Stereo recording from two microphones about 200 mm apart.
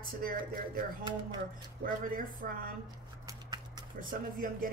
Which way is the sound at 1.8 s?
45° right (ahead or behind).